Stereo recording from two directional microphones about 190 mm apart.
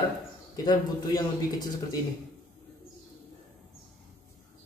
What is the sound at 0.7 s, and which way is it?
A man's voice, 20° left (ahead or behind).